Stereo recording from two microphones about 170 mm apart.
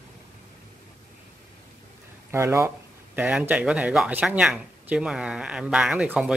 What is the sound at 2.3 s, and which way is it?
Speech, 15° right (ahead or behind).